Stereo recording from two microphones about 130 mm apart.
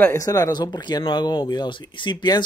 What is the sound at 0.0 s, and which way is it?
Speech, 20° left (ahead or behind).